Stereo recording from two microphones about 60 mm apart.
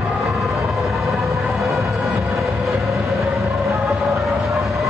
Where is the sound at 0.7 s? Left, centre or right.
Centre.